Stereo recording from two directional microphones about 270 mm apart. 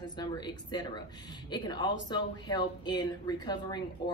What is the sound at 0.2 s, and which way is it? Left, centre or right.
Speech, centre.